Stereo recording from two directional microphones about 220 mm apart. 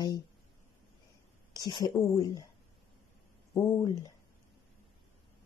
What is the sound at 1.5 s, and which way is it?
Speech, 15° left (ahead or behind).